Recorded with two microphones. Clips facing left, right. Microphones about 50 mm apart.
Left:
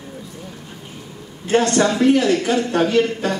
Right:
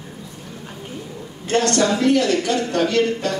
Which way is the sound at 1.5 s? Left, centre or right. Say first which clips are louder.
Left 2 dB; centre.